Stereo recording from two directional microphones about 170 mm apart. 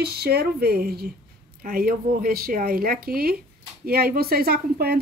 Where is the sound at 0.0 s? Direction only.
65° right (ahead or behind).